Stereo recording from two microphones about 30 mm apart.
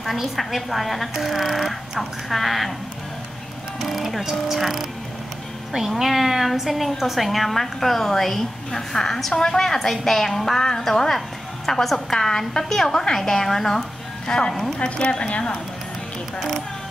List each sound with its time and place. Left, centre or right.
0.0 s speech: centre
3.8 s speech: centre
6.0 s a woman's voice: centre
14.8 s speech: left